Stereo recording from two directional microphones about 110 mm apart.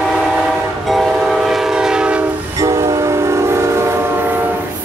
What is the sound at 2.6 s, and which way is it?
Train, 30° right (ahead or behind).